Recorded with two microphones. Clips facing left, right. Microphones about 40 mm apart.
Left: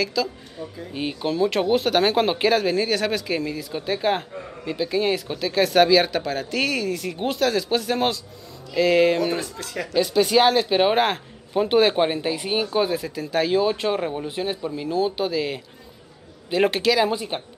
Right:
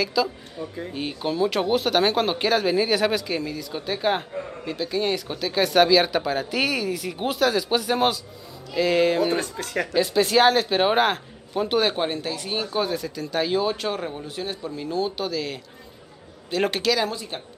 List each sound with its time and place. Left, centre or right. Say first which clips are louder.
0.0 s speech: right 1 dB; centre
0.9 s speech: left 2 dB; centre
12.7 s speech: left 3 dB; centre
14.8 s speech: left 3 dB; centre
17.1 s speech: left 6 dB; left